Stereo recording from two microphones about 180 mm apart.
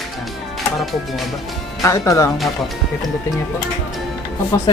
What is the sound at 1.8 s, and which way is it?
Speech, 15° left (ahead or behind).